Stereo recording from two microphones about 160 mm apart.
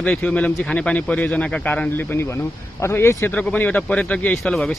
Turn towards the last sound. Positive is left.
turn(degrees=5)  # may be behind; listen again after turning